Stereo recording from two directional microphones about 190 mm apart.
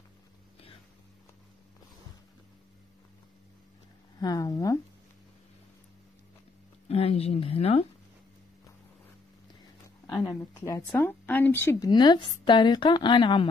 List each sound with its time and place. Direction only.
4.2 s a sound: 20° left (ahead or behind)
6.9 s speech: 30° left (ahead or behind)
10.0 s speech: 20° left (ahead or behind)
11.9 s a woman's voice: 20° left (ahead or behind)